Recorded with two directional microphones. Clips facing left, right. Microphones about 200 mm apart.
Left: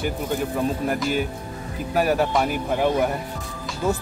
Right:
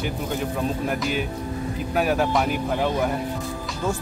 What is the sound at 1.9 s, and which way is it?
Speech, centre (ahead or behind).